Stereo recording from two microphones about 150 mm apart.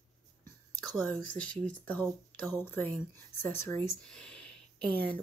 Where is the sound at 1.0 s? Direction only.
10° left (ahead or behind).